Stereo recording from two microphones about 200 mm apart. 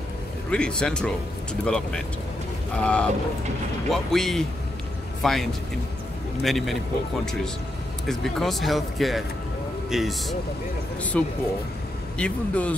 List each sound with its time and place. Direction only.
0.5 s speech: 5° left (ahead or behind)
8.1 s a man's voice: centre (ahead or behind)